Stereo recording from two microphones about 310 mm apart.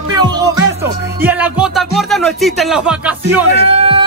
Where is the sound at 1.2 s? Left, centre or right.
Centre.